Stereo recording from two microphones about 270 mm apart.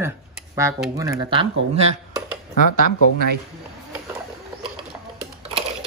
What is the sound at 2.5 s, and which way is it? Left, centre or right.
Speech, left.